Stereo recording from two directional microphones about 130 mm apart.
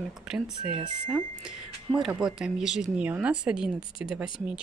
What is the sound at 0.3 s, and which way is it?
Speech, 5° right (ahead or behind).